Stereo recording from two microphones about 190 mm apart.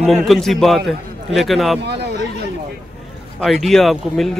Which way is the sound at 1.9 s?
60° right (ahead or behind).